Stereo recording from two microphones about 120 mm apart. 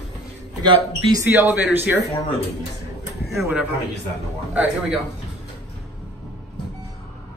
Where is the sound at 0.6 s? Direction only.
40° right (ahead or behind).